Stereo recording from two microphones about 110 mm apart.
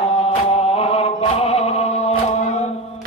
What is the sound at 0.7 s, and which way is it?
Chant, 65° left (ahead or behind).